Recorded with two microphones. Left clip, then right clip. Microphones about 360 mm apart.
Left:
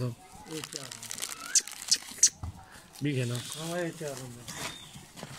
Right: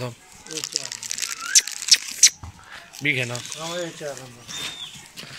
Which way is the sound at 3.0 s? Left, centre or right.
Right.